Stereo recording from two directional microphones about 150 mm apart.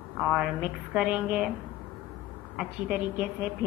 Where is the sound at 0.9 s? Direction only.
5° right (ahead or behind).